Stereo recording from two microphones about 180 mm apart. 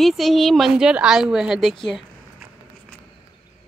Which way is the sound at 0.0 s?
Centre (ahead or behind).